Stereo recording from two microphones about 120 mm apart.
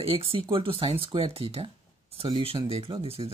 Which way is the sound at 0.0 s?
50° right (ahead or behind).